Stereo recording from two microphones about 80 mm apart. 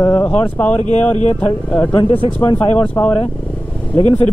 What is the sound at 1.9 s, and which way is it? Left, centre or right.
Speech, left.